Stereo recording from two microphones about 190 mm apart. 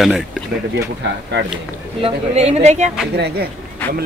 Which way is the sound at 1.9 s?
30° right (ahead or behind).